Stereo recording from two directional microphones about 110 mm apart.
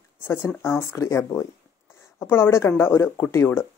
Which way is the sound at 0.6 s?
20° left (ahead or behind).